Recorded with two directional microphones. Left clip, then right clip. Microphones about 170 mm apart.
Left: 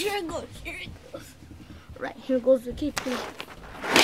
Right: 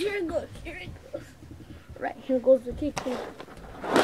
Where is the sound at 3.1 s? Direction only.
5° right (ahead or behind).